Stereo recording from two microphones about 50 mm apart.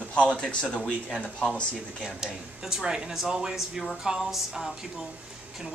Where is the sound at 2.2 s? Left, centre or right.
Centre.